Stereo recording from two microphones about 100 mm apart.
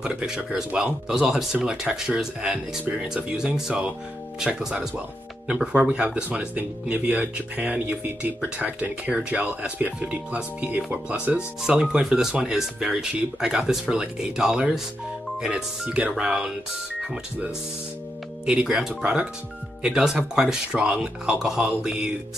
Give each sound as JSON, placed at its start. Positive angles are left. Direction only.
{"t": 0.0, "sound": "speech", "side_deg": -10}
{"t": 18.4, "sound": "speech", "side_deg": -5}